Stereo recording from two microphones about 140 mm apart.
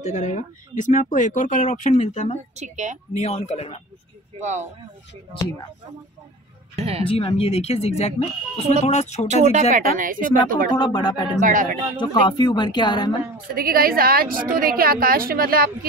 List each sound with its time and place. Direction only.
0.0 s speech: 55° left (ahead or behind)
2.5 s a woman's voice: 60° right (ahead or behind)
3.1 s speech: 50° left (ahead or behind)
4.4 s a woman's voice: 55° right (ahead or behind)
7.1 s speech: 40° left (ahead or behind)
9.3 s a woman's voice: 55° right (ahead or behind)
9.7 s a woman's voice: 75° right (ahead or behind)
10.8 s speech: 30° left (ahead or behind)
11.3 s speech: 70° right (ahead or behind)
12.0 s speech: 30° left (ahead or behind)
13.6 s a woman's voice: 90° right